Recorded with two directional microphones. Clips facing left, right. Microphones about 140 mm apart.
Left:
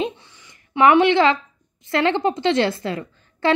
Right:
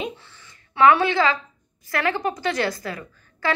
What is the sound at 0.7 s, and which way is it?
A woman's voice, 20° left (ahead or behind).